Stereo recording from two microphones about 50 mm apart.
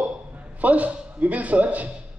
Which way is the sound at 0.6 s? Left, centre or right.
Right.